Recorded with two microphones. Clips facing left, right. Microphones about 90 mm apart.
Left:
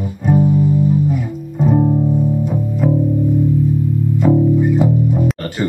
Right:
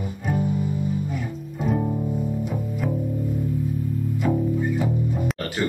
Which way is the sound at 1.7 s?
30° left (ahead or behind).